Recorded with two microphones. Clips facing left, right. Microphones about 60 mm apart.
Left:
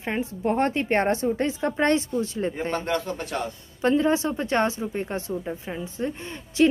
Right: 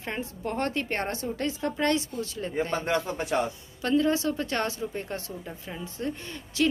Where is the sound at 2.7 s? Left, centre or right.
Centre.